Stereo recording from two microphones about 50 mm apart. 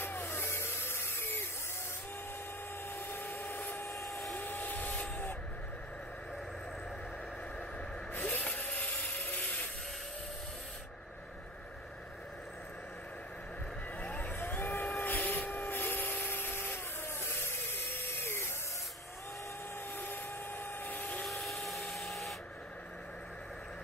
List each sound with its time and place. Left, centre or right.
0.0 s a sound: left
3.0 s a sound: left
3.8 s helicopter: left
4.4 s vehicle: left
8.2 s wood: left
9.1 s a sound: left
13.9 s vehicle: left
20.0 s helicopter: left
21.3 s vacuum cleaner: centre